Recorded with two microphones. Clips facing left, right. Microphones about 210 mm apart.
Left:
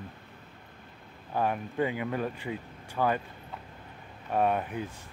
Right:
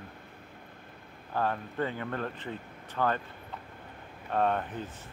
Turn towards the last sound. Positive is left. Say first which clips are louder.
# left 2 dB
turn(degrees=10)  # may be behind; listen again after turning